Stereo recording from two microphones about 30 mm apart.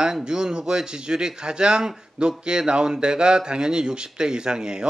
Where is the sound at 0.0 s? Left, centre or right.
Right.